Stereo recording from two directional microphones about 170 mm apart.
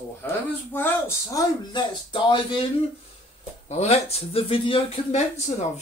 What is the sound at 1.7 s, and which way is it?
Speech, 25° left (ahead or behind).